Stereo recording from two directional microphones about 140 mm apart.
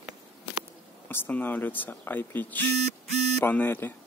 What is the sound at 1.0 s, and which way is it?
Speech, 15° left (ahead or behind).